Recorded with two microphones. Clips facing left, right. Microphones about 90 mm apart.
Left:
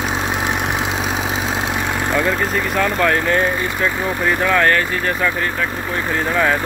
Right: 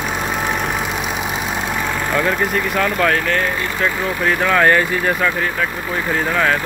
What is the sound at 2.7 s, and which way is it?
Speech, centre (ahead or behind).